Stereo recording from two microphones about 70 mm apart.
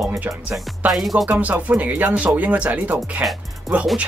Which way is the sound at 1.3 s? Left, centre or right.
Right.